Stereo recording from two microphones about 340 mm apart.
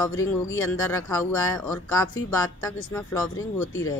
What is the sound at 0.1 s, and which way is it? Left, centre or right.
Speech, left.